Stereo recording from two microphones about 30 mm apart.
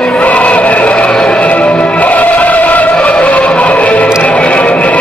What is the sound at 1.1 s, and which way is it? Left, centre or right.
Music, left.